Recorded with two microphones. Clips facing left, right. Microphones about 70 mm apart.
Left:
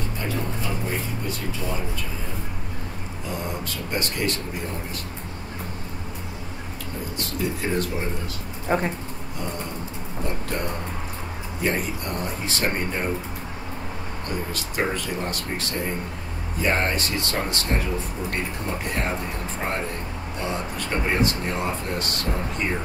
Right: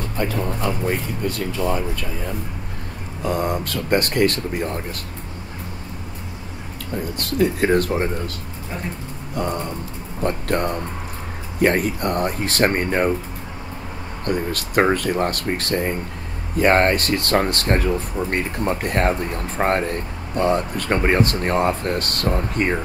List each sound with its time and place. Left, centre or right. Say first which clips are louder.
0.2 s speech: right 7 dB; right
3.3 s speech: right 9 dB; right
7.2 s speech: right 9 dB; right
10.2 s speech: right 8 dB; right
14.2 s speech: right 8 dB; right